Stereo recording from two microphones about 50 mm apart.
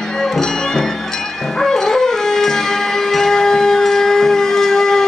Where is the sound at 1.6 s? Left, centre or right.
Centre.